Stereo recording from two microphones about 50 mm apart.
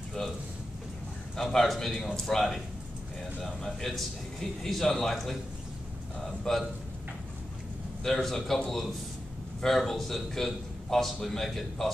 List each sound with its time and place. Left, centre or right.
1.3 s a man's voice: centre
8.0 s a man's voice: centre
9.6 s a man's voice: centre